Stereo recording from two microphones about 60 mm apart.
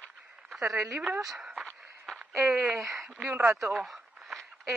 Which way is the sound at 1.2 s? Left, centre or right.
Centre.